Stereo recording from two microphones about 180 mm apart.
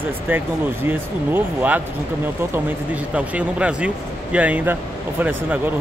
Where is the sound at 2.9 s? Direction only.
10° right (ahead or behind).